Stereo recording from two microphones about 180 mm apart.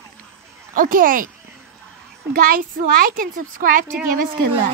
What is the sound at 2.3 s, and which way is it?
A child's voice, 50° right (ahead or behind).